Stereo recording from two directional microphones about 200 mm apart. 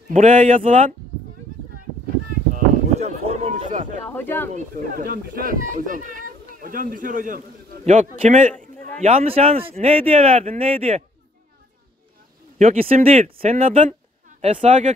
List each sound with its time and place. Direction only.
0.1 s speech: 40° right (ahead or behind)
2.5 s a sound: 35° right (ahead or behind)
4.1 s speech: 10° left (ahead or behind)
4.5 s speech: 40° right (ahead or behind)
12.5 s speech: 30° right (ahead or behind)